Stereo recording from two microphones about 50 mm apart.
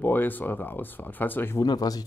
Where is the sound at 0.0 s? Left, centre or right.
Left.